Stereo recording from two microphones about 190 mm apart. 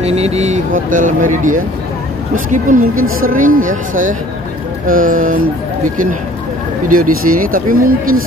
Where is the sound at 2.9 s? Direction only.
90° right.